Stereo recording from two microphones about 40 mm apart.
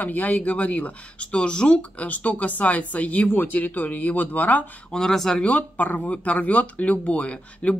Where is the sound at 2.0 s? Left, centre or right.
Left.